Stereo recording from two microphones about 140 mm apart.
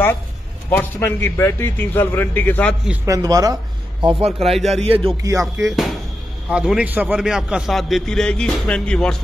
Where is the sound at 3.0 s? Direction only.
25° right (ahead or behind); by 4.5 s 45° right (ahead or behind).